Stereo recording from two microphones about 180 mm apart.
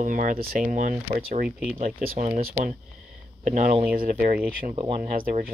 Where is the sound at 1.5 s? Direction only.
5° right (ahead or behind).